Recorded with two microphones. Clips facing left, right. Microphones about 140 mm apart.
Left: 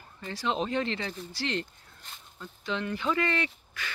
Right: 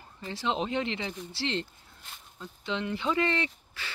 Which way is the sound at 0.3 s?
25° right (ahead or behind).